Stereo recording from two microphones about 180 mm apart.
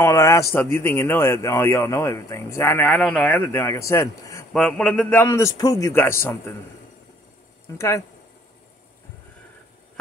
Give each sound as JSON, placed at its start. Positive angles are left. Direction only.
{"t": 0.0, "sound": "a man's voice", "side_deg": 15}
{"t": 7.7, "sound": "a man's voice", "side_deg": 15}